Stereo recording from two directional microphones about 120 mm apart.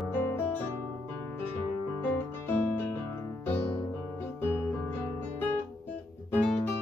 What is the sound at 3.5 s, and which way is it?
Music, 10° left (ahead or behind).